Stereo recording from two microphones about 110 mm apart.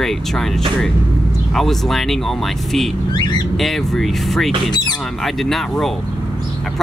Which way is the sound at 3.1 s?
45° left (ahead or behind).